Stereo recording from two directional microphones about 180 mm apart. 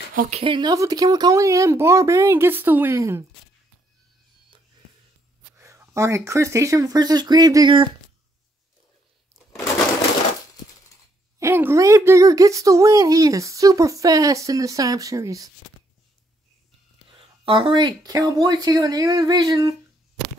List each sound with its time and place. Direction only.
0.1 s speech: 45° right (ahead or behind)
0.4 s speech: 25° right (ahead or behind)
5.6 s speech: 15° right (ahead or behind)
11.3 s speech: 15° right (ahead or behind)
17.1 s speech: 30° right (ahead or behind)